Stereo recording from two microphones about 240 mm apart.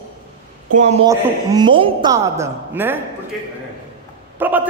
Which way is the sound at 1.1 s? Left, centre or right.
Centre.